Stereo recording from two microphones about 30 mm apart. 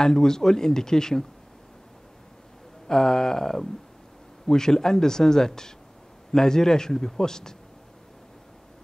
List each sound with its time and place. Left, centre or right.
0.0 s speech: centre
2.9 s a sound: centre
4.5 s speech: centre